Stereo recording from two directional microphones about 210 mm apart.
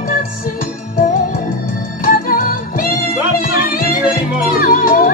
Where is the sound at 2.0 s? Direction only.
45° left (ahead or behind).